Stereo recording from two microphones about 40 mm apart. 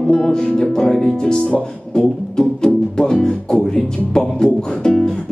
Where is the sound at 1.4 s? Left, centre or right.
Left.